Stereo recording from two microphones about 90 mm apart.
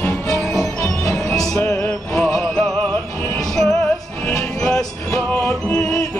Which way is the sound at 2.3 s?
10° left (ahead or behind).